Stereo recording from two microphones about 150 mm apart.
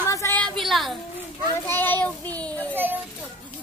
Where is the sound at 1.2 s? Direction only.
15° left (ahead or behind).